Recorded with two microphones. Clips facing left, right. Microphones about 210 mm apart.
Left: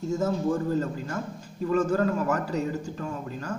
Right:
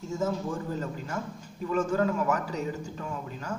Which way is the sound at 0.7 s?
45° left (ahead or behind).